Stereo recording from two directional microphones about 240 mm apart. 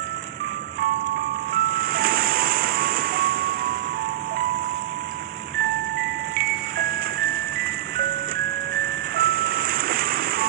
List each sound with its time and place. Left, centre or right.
1.5 s vehicle: right
6.3 s music: right
9.1 s ice cream truck: right